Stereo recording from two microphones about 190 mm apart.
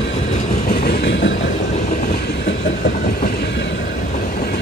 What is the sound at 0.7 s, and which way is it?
Train, 55° left (ahead or behind).